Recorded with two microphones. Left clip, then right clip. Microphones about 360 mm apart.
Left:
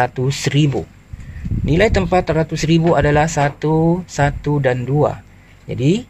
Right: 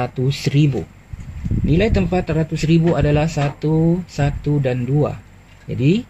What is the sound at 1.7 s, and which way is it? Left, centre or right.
Speech, centre.